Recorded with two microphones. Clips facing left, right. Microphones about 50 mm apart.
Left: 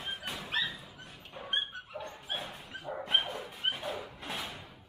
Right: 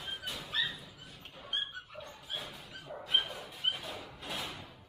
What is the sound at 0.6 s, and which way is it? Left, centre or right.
Dog, left.